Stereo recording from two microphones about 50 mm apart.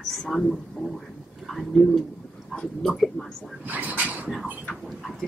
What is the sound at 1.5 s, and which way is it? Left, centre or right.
Speech, centre.